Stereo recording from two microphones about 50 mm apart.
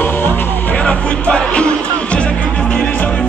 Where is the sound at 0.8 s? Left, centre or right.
Left.